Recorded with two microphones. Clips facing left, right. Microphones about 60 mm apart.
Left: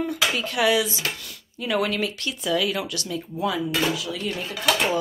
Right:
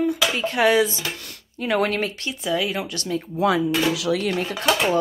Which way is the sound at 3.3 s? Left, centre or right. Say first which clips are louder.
Right 5 dB; right.